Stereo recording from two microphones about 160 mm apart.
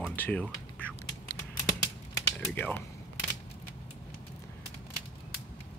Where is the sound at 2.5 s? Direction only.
10° left (ahead or behind).